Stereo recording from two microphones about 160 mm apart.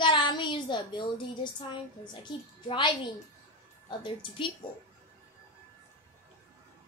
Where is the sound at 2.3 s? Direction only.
30° left (ahead or behind).